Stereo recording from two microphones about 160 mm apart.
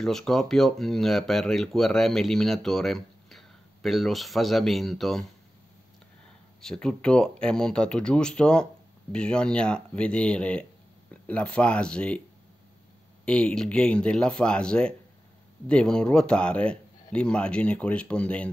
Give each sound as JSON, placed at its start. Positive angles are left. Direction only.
{"t": 0.0, "sound": "speech", "side_deg": 5}
{"t": 6.6, "sound": "a man's voice", "side_deg": 5}
{"t": 13.2, "sound": "a man's voice", "side_deg": 5}